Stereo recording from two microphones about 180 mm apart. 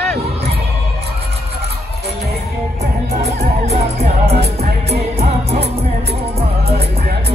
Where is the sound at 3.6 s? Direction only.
35° right (ahead or behind).